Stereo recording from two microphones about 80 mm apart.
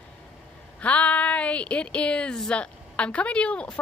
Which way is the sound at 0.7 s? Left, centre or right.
Centre.